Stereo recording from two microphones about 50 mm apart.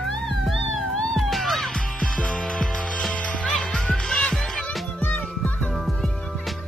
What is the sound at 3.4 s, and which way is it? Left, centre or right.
Music, centre.